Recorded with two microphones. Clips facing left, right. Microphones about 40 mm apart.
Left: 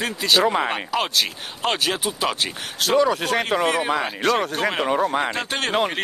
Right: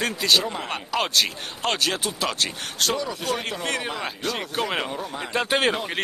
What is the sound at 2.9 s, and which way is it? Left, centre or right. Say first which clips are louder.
Speech: left 8 dB; left.